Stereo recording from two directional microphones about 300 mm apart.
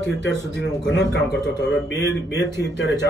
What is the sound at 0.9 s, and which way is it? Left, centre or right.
A man's voice, left.